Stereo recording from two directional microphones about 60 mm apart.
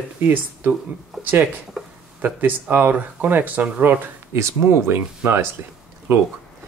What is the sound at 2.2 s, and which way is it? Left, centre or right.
Speech, right.